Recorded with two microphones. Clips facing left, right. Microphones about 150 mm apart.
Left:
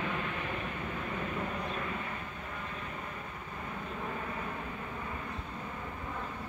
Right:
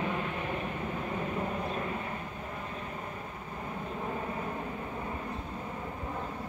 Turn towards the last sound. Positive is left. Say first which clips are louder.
# right 3 dB
turn(degrees=-25)  # may be behind; listen again after turning